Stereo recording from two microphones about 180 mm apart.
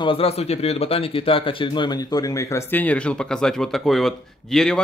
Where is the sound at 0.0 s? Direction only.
30° left (ahead or behind).